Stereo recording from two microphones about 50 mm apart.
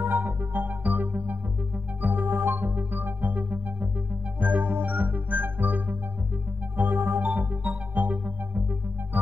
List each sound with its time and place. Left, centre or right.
0.2 s music: right
7.2 s music: right